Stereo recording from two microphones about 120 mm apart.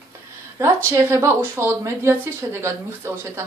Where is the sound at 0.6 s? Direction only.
20° right (ahead or behind).